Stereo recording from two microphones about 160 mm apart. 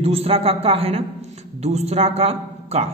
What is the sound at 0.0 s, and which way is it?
A man's voice, 40° right (ahead or behind).